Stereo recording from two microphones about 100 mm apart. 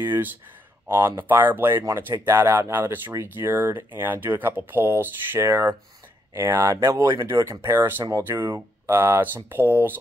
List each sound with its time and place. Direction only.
0.0 s speech: 25° right (ahead or behind)